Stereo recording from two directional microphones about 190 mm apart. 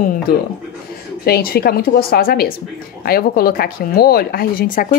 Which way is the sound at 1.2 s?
55° left (ahead or behind).